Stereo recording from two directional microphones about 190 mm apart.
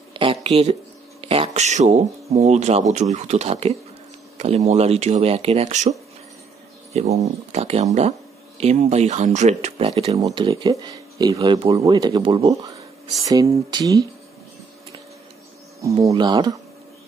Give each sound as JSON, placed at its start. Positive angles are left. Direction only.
{"t": 0.1, "sound": "a sound", "side_deg": -25}
{"t": 1.2, "sound": "speech", "side_deg": -30}
{"t": 10.1, "sound": "speech", "side_deg": -20}
{"t": 15.8, "sound": "speech", "side_deg": -15}